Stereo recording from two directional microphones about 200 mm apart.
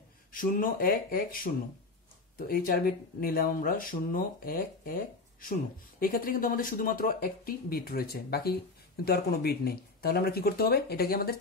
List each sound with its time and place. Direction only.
0.3 s speech: 45° left (ahead or behind)